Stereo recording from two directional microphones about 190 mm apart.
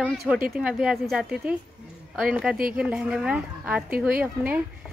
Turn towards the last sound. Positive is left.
turn(degrees=-10)  # may be behind; listen again after turning